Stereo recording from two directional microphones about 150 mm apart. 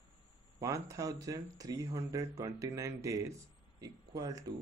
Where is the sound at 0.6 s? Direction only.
20° right (ahead or behind).